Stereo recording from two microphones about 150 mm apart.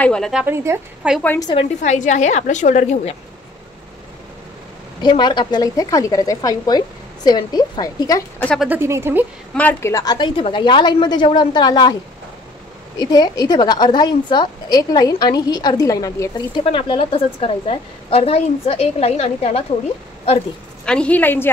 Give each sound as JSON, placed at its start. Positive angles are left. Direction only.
{"t": 0.0, "sound": "speech", "side_deg": 5}
{"t": 0.7, "sound": "speech", "side_deg": -20}
{"t": 1.0, "sound": "a woman's voice", "side_deg": -10}
{"t": 1.8, "sound": "a woman's voice", "side_deg": 55}
{"t": 5.0, "sound": "a woman's voice", "side_deg": 30}
{"t": 8.5, "sound": "a woman's voice", "side_deg": -10}
{"t": 9.6, "sound": "a woman's voice", "side_deg": 15}
{"t": 13.0, "sound": "a woman's voice", "side_deg": 25}
{"t": 20.8, "sound": "a woman's voice", "side_deg": 5}